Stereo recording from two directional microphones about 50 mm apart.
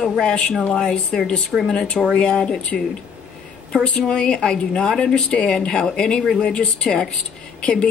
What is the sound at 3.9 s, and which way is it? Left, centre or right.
Speech, centre.